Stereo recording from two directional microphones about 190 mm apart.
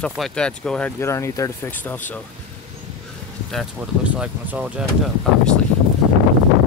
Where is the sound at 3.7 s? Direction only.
5° right (ahead or behind).